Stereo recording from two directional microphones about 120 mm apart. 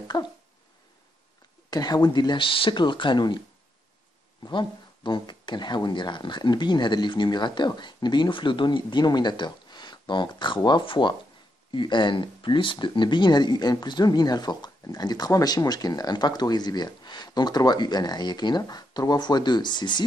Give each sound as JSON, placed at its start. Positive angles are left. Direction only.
{"t": 0.1, "sound": "speech", "side_deg": 35}
{"t": 1.7, "sound": "speech", "side_deg": 35}
{"t": 4.5, "sound": "speech", "side_deg": 40}